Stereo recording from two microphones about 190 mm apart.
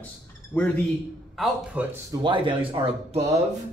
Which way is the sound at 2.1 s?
25° right (ahead or behind).